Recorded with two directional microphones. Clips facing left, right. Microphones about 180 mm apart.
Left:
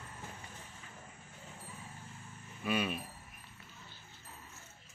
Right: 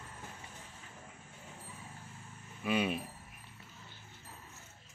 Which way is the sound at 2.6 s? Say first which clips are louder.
Right 2 dB; 20° right (ahead or behind).